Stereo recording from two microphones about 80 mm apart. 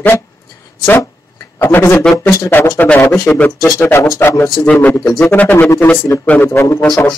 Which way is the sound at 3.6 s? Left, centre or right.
Left.